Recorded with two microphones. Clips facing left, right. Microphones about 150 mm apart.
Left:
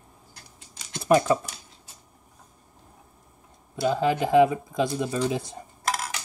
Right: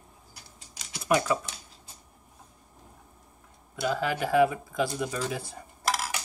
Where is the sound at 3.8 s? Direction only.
20° left (ahead or behind).